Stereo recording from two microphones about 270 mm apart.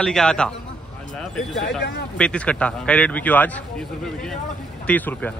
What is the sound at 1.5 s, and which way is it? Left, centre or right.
Speech, left.